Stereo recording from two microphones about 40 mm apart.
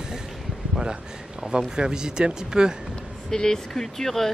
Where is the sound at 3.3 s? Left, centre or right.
Centre.